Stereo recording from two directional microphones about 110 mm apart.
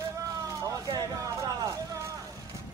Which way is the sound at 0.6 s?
30° right (ahead or behind).